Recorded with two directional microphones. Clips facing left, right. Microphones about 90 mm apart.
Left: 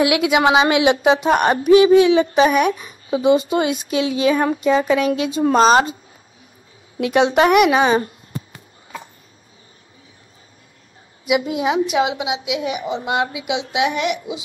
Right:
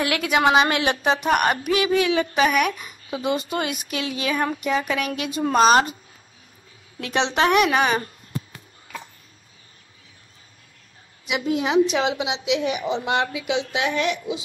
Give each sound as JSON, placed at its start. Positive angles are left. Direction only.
{"t": 0.0, "sound": "a woman's voice", "side_deg": 20}
{"t": 7.0, "sound": "a sound", "side_deg": 10}
{"t": 11.2, "sound": "a woman's voice", "side_deg": 10}